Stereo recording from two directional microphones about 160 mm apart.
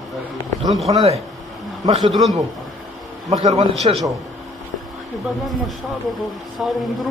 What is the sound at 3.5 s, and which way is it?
Speech, 35° right (ahead or behind).